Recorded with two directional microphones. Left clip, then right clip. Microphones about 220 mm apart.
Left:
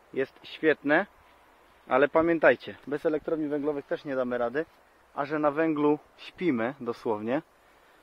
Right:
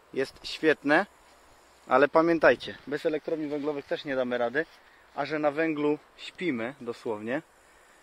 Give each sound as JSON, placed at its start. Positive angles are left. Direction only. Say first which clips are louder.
{"t": 0.1, "sound": "speech", "louder": "even", "side_deg": -5}
{"t": 3.0, "sound": "speech", "louder": "left 1 dB", "side_deg": 10}